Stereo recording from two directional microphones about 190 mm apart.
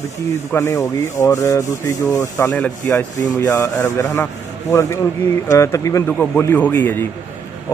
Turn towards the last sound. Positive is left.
turn(degrees=10)  # may be behind; listen again after turning